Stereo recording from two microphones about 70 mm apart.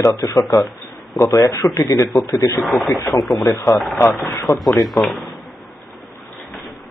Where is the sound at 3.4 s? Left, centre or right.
Left.